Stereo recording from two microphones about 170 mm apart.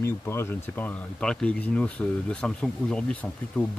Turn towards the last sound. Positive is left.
turn(degrees=10)  # may be behind; listen again after turning